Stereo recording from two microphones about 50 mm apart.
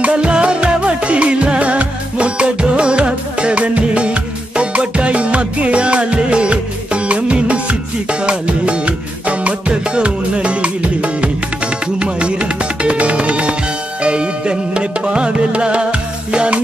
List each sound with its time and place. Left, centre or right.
0.0 s music: centre